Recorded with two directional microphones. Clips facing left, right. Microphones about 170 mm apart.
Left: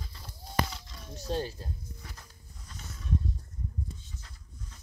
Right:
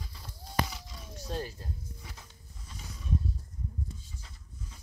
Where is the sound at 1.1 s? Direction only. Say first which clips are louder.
Left 4 dB; 30° left (ahead or behind).